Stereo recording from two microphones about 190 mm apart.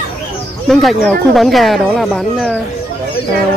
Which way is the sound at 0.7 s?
Centre (ahead or behind).